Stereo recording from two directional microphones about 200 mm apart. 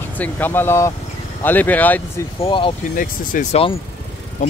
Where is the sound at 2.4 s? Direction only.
25° left (ahead or behind).